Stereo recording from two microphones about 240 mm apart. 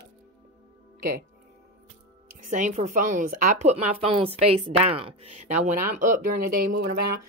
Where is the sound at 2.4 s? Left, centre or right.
Right.